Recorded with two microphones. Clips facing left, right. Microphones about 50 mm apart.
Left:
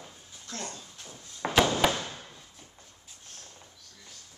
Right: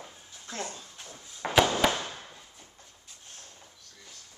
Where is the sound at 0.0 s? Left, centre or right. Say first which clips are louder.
Right 2 dB; centre.